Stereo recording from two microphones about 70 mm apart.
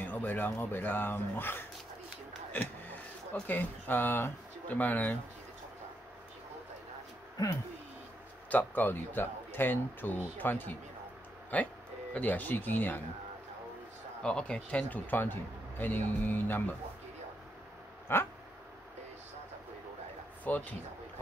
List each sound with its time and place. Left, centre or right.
0.0 s speech: left
2.5 s a sound: left
3.4 s speech: left
8.5 s speech: left
14.2 s speech: centre
18.1 s a sound: left
20.5 s speech: left